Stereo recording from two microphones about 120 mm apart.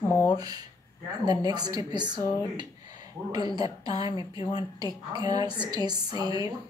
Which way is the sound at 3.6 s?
45° left (ahead or behind).